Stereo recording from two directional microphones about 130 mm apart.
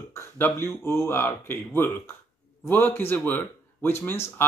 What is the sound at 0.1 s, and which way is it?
Speech, 20° left (ahead or behind).